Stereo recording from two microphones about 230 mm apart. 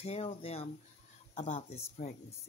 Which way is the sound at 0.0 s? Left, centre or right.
Left.